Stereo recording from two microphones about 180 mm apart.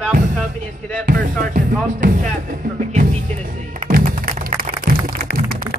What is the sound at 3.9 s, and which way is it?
Music, 55° right (ahead or behind).